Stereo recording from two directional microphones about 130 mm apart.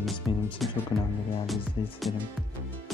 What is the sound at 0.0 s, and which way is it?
Music, centre (ahead or behind).